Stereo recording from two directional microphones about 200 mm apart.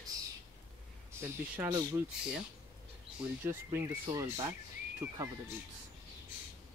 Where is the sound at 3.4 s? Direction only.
10° right (ahead or behind).